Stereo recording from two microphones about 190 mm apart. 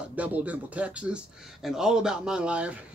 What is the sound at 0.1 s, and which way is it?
Speech, 5° right (ahead or behind).